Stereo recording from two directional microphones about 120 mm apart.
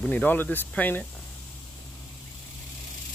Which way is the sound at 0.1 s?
15° left (ahead or behind).